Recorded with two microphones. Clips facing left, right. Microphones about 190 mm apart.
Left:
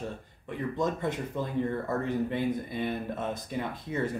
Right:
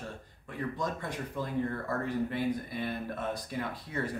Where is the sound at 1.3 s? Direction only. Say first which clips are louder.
Left 3 dB; 20° left (ahead or behind).